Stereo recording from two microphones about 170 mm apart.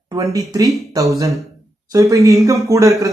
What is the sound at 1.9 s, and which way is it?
Speech, 20° right (ahead or behind).